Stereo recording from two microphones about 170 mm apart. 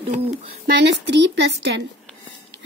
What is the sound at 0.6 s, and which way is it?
Speech, 85° right.